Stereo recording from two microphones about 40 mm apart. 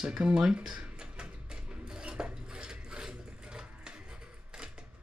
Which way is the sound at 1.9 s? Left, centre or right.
Right.